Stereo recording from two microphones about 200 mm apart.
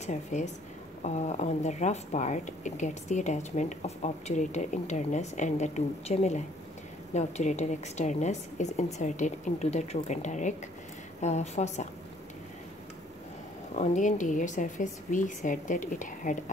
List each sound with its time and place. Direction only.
0.0 s speech: 35° left (ahead or behind)
13.7 s speech: 40° left (ahead or behind)